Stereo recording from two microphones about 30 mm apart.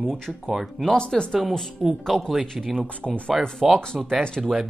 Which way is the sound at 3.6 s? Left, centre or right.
Right.